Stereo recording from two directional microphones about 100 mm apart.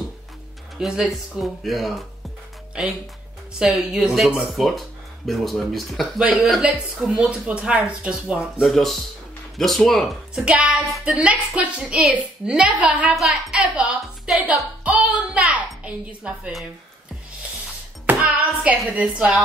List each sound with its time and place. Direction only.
0.7 s speech: 5° right (ahead or behind)
10.4 s a woman's voice: 10° right (ahead or behind)
18.0 s music: 15° right (ahead or behind)
18.9 s speech: 15° right (ahead or behind)